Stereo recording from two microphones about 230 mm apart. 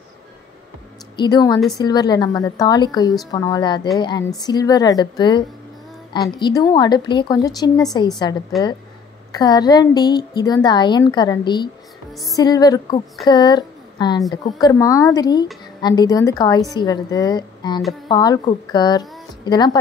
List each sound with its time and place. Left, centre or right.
1.1 s a woman's voice: centre
9.3 s a woman's voice: centre